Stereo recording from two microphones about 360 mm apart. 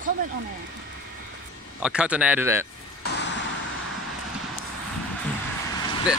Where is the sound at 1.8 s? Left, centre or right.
Centre.